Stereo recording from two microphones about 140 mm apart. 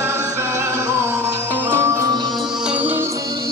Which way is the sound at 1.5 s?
15° right (ahead or behind).